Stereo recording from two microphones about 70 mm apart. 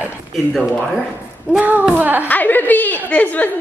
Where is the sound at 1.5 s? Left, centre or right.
Right.